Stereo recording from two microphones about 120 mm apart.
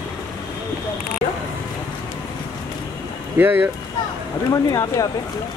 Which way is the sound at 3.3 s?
15° right (ahead or behind).